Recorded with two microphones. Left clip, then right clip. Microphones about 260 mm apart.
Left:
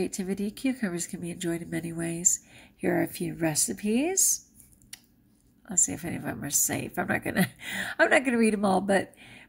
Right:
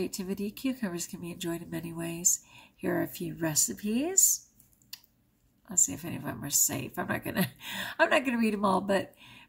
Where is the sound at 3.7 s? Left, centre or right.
Right.